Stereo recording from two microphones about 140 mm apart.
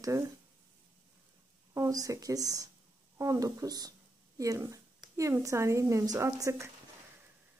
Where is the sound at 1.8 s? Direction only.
25° right (ahead or behind).